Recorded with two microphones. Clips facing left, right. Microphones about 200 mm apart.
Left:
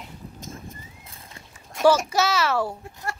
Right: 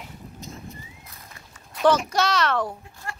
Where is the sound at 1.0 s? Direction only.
30° left (ahead or behind).